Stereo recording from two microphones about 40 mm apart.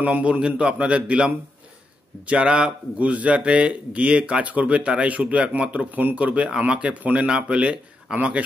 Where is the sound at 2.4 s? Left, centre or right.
Centre.